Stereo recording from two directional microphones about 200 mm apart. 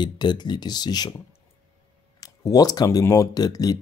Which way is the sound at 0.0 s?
20° left (ahead or behind).